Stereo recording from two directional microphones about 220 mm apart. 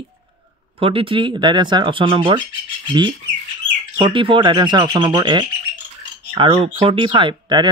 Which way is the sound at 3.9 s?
20° right (ahead or behind).